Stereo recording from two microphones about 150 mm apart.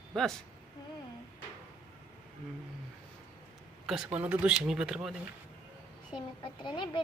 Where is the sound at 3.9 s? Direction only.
10° right (ahead or behind).